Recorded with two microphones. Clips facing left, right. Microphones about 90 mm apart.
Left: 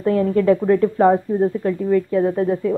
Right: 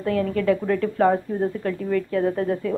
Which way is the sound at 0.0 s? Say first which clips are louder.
Left 5 dB; 25° left (ahead or behind).